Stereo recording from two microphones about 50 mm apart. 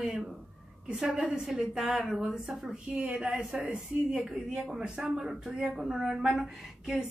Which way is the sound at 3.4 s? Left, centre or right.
Centre.